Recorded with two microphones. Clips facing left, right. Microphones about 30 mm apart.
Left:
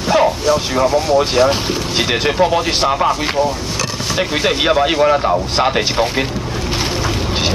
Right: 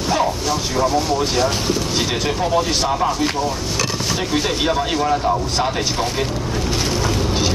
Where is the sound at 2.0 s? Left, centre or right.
Left.